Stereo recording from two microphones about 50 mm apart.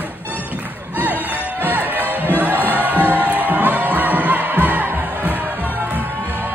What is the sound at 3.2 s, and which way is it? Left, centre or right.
Music, right.